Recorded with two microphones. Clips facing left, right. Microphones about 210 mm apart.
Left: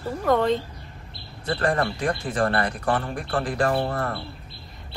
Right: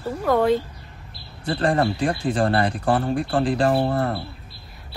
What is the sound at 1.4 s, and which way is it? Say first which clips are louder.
Speech: right 3 dB; 30° right (ahead or behind).